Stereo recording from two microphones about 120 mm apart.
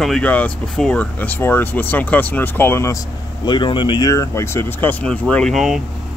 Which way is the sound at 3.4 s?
40° left (ahead or behind).